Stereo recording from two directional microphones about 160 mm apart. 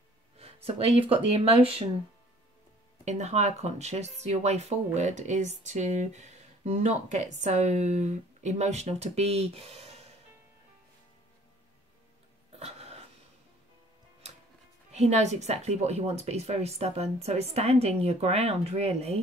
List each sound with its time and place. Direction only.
0.4 s speech: 40° right (ahead or behind)
3.1 s speech: 45° right (ahead or behind)
12.5 s a sound: 40° right (ahead or behind)
14.9 s speech: 45° right (ahead or behind)